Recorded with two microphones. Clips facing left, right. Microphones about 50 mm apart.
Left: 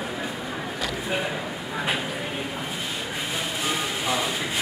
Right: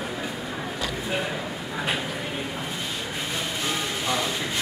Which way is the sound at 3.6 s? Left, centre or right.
Centre.